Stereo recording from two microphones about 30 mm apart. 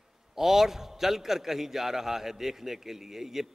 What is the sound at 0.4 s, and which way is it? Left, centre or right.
A man's voice, centre.